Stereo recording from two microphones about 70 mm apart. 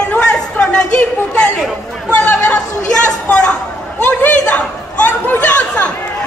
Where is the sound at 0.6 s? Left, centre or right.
Centre.